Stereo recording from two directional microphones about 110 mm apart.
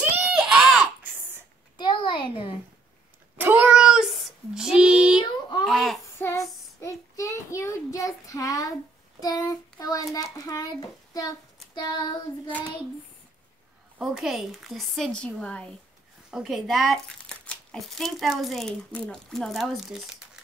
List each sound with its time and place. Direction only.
0.5 s a sound: 5° right (ahead or behind)
1.8 s a sound: 45° left (ahead or behind)
3.3 s cat: 20° right (ahead or behind)
3.6 s child singing: 5° right (ahead or behind)
5.7 s a sound: 5° left (ahead or behind)
6.1 s female singing: 25° left (ahead or behind)
6.8 s child singing: 25° left (ahead or behind)
13.9 s a child's voice: 5° right (ahead or behind)
16.3 s a child's voice: 5° right (ahead or behind)